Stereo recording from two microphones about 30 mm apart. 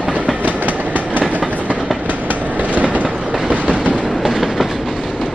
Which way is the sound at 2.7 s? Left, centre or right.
Right.